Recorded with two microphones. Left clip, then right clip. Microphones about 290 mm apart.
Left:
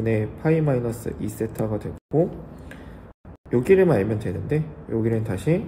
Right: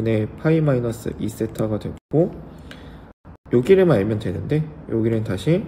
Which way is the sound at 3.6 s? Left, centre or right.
Centre.